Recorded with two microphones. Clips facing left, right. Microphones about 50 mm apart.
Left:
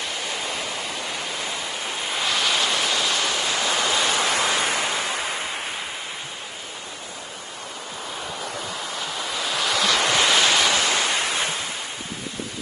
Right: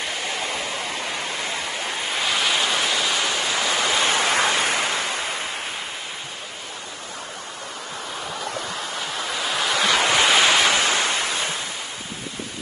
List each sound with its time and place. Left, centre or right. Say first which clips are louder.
2.1 s waves: right 1 dB; centre
4.0 s waves: right 2 dB; right
9.3 s waves: right 1 dB; centre
10.3 s waves: right 2 dB; right
11.2 s ocean: left 1 dB; left